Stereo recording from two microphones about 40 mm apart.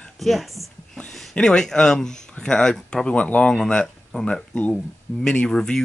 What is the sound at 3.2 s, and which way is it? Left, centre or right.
Speech, left.